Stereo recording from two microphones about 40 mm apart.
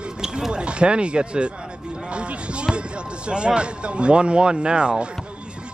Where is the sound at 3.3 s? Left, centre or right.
Right.